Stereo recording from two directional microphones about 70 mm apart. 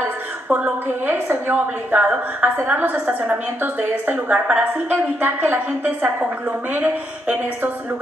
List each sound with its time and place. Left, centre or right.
0.5 s a woman's voice: right